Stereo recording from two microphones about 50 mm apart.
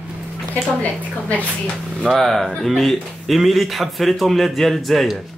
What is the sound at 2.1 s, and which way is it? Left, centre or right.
A man's voice, centre.